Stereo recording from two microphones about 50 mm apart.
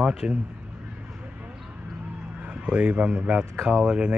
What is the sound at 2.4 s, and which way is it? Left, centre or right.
A man's voice, right.